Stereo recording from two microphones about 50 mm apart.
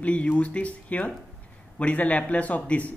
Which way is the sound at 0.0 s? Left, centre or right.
Left.